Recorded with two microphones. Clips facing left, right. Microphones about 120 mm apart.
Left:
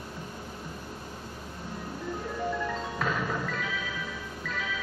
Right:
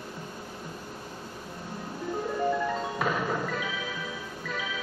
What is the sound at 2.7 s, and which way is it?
Music, 15° right (ahead or behind).